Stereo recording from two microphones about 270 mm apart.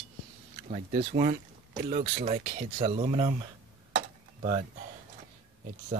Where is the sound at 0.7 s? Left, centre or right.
Right.